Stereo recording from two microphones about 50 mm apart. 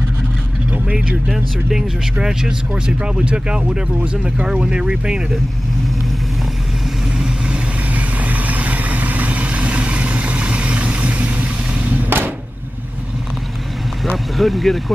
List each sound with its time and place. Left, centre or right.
0.9 s speech: centre
7.2 s vehicle: centre
7.9 s vehicle: right
14.1 s speech: centre